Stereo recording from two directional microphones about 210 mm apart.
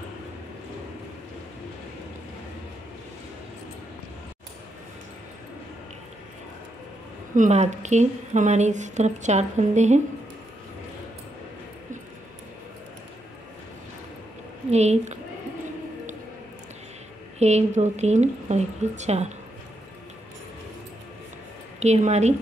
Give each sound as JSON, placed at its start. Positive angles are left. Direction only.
{"t": 7.3, "sound": "speech", "side_deg": -35}
{"t": 14.7, "sound": "a woman's voice", "side_deg": -30}
{"t": 17.4, "sound": "speech", "side_deg": -30}
{"t": 21.7, "sound": "speech", "side_deg": -30}